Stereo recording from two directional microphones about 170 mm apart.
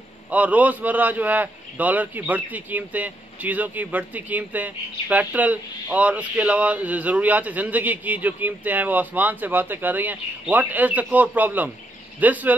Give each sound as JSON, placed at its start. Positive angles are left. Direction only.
{"t": 0.3, "sound": "a man's voice", "side_deg": -10}